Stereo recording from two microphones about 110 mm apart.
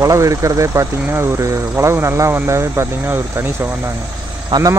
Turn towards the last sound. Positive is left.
turn(degrees=-30)  # may be behind; listen again after turning